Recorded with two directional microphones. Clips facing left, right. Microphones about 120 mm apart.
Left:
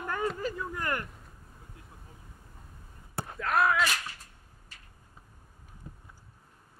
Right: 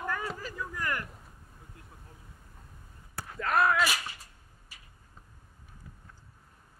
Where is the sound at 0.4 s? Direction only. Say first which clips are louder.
Left 3 dB; 25° left (ahead or behind).